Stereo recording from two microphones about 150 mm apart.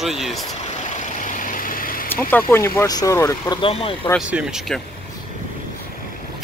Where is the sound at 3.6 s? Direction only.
35° left (ahead or behind).